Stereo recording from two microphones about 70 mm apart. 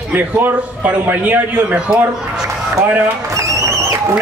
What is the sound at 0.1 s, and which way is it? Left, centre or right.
A man's voice, right.